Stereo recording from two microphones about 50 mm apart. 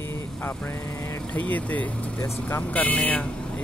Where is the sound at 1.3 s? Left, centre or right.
Left.